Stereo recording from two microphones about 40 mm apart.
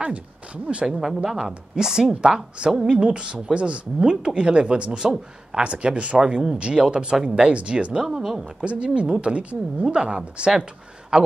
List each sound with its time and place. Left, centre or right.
0.7 s a woman's voice: right
6.1 s a woman's voice: centre; by 9.9 s right
9.9 s speech: right